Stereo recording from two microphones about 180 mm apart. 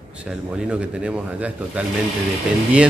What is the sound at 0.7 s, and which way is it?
A man's voice, 5° right (ahead or behind).